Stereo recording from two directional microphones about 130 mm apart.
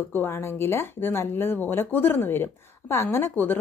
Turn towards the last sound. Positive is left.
turn(degrees=15)  # may be behind; listen again after turning